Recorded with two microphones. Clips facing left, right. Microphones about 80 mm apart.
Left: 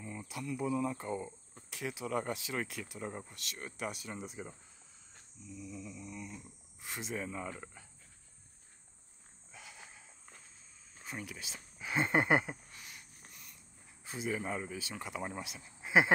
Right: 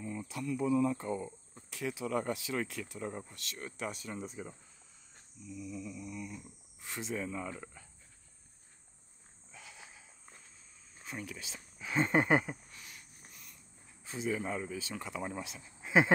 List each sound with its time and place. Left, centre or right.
0.0 s cricket: left
0.3 s speech: centre
2.7 s speech: centre
5.5 s speech: left
6.8 s speech: centre
9.5 s a sound: centre
11.1 s speech: centre
13.3 s a sound: centre
14.0 s speech: centre